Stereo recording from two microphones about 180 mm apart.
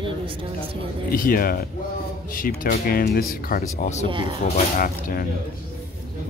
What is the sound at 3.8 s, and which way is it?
Speech, 40° left (ahead or behind).